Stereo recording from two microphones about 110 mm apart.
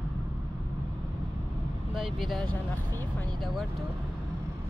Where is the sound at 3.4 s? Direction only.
Centre (ahead or behind).